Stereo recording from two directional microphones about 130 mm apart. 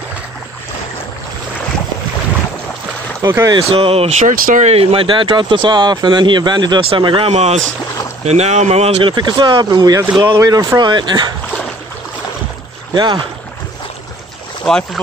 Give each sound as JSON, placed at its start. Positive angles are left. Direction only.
{"t": 3.2, "sound": "speech", "side_deg": -25}
{"t": 3.5, "sound": "speech", "side_deg": -45}
{"t": 4.7, "sound": "speech", "side_deg": -40}
{"t": 9.1, "sound": "speech", "side_deg": -35}
{"t": 12.9, "sound": "speech", "side_deg": -35}
{"t": 14.6, "sound": "speech", "side_deg": 5}